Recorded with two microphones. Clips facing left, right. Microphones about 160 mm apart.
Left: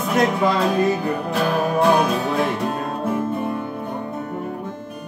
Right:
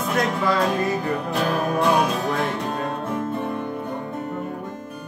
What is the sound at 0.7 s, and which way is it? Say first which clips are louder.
Music: left 3 dB; centre (ahead or behind).